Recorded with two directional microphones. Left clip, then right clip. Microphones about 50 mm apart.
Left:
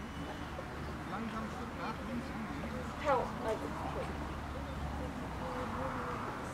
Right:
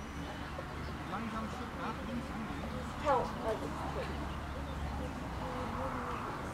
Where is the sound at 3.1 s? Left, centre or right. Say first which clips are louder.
Right 1 dB; centre.